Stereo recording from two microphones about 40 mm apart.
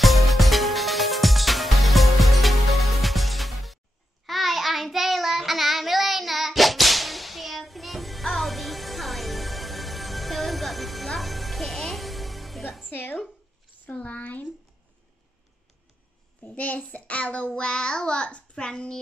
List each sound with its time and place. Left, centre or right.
0.0 s music: centre
4.3 s child singing: centre
12.9 s a sound: left
13.9 s a sound: left
16.4 s a child's voice: left
17.6 s child singing: left
18.7 s a child's voice: centre